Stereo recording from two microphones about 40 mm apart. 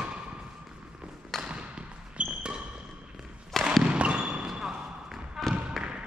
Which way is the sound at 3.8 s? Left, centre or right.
Right.